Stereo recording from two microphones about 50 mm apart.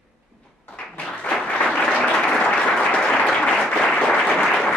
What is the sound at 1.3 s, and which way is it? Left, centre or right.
Applause, centre.